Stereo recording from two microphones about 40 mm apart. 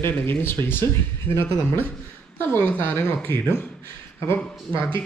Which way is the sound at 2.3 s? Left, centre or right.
Left.